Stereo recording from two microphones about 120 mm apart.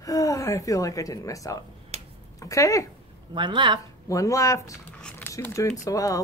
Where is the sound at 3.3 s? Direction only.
40° right (ahead or behind).